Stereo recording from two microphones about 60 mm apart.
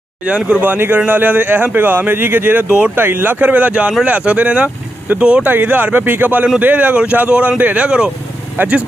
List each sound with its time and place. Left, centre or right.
0.6 s a man's voice: right